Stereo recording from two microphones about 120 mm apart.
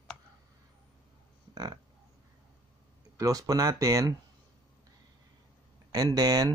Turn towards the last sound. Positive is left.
turn(degrees=-30)  # may be behind; listen again after turning